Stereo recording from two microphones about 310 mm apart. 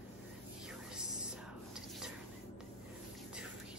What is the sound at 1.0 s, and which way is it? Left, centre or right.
Whispering, centre.